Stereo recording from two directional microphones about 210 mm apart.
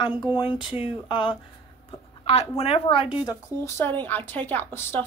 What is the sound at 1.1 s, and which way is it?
Speech, 20° left (ahead or behind).